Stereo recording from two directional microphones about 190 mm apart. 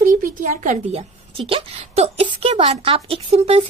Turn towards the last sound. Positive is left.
turn(degrees=-30)  # may be behind; listen again after turning